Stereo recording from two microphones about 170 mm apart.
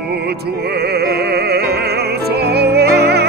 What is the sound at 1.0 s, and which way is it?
Music, 70° right (ahead or behind).